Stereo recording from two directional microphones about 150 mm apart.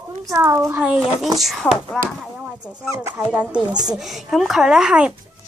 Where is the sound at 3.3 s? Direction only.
10° right (ahead or behind).